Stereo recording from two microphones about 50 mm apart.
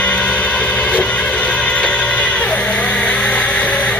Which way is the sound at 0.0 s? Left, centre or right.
Left.